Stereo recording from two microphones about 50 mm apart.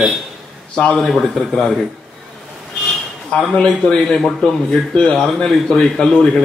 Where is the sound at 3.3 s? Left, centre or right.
Centre.